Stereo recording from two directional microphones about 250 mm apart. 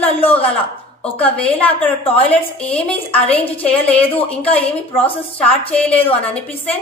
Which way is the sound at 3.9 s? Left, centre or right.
Left.